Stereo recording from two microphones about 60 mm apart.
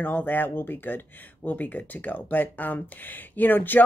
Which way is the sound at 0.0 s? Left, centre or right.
Left.